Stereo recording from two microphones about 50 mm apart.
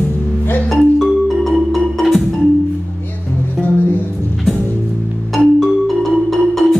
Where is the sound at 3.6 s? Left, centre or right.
Left.